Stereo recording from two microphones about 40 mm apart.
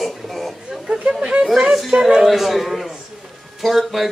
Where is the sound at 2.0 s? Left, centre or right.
Centre.